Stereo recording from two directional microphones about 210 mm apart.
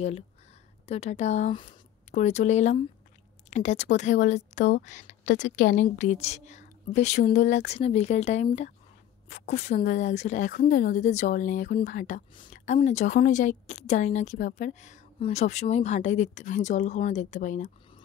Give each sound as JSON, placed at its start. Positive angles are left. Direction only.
{"t": 0.8, "sound": "speech", "side_deg": 30}